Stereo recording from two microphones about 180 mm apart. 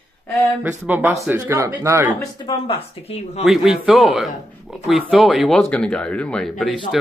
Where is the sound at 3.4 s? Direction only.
Centre (ahead or behind).